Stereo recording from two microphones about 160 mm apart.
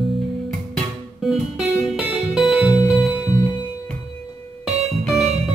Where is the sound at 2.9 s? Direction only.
5° right (ahead or behind).